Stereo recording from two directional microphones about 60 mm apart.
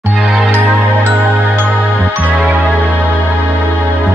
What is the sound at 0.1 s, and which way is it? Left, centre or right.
Music, centre.